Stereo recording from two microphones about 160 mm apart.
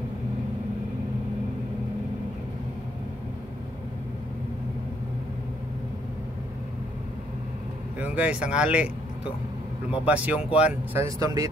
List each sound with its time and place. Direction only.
8.0 s speech: 10° right (ahead or behind)